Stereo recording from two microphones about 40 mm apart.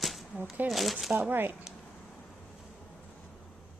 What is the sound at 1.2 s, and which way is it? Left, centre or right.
Speech, right.